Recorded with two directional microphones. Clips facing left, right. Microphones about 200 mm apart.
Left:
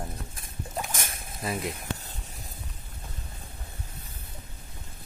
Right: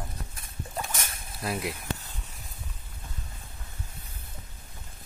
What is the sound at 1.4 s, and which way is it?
Speech, 5° right (ahead or behind).